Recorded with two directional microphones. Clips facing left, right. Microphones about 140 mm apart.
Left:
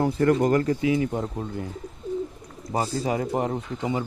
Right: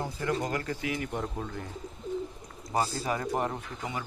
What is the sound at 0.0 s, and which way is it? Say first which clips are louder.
Speech: left 11 dB; 65° left (ahead or behind).